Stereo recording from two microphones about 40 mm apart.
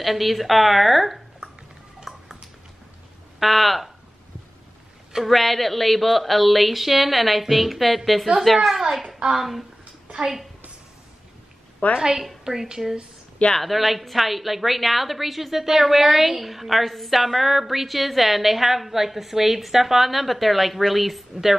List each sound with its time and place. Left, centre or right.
0.0 s speech: centre
2.1 s a sound: centre
3.3 s a woman's voice: centre
5.3 s a woman's voice: centre
10.0 s a sound: right
11.8 s a woman's voice: left
12.4 s a child's voice: centre
13.6 s a woman's voice: centre